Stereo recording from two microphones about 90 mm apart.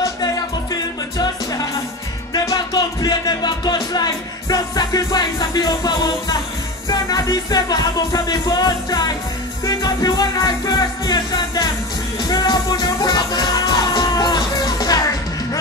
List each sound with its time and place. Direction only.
0.0 s music: 45° left (ahead or behind)